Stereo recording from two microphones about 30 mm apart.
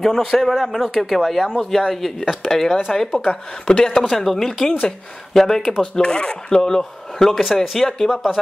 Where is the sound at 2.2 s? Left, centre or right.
Centre.